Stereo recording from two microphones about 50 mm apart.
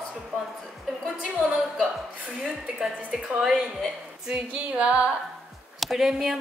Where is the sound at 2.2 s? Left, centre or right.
Centre.